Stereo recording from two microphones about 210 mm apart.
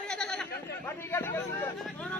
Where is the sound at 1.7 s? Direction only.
5° left (ahead or behind).